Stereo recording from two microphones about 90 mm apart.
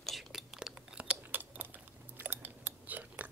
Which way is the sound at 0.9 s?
20° right (ahead or behind).